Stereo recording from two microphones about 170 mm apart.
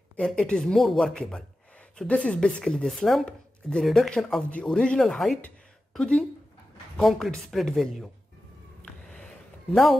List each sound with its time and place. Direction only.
0.1 s speech: 5° left (ahead or behind)
9.7 s speech: centre (ahead or behind)